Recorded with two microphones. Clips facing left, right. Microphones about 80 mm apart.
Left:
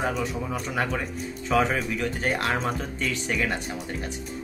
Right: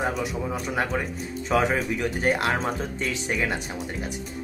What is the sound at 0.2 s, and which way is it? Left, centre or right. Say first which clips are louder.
Speech: right 1 dB; centre.